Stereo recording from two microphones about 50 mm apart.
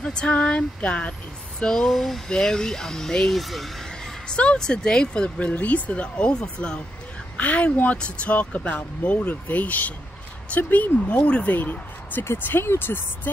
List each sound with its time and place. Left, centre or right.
0.0 s a sound: centre
0.3 s speech: left
1.6 s speech: centre
1.9 s speech: centre
2.2 s speech: centre
3.3 s speech: centre
4.3 s speech: centre
5.5 s speech: left
7.3 s speech: left